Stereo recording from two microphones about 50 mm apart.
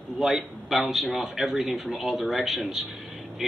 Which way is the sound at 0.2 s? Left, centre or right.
Centre.